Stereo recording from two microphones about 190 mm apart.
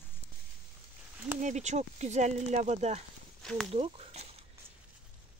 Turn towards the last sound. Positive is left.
turn(degrees=-35)  # may be behind; listen again after turning